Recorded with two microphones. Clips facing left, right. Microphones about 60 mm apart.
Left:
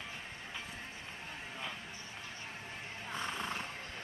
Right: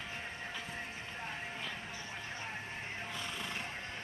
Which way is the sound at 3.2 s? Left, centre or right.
Left.